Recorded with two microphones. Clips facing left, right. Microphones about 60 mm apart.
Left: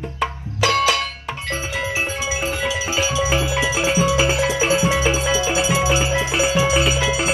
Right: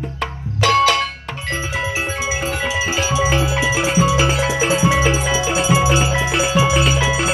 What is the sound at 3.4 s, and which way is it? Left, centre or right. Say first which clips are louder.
Music: right 2 dB; right.